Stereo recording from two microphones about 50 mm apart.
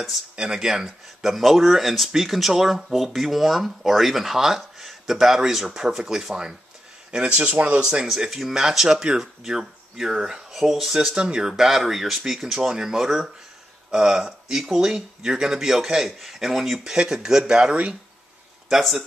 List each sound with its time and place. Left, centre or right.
0.4 s speech: centre
7.8 s speech: centre
11.1 s speech: centre
18.7 s speech: centre